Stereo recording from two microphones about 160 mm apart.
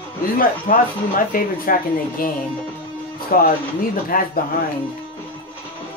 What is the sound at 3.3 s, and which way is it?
Speech, 65° left (ahead or behind).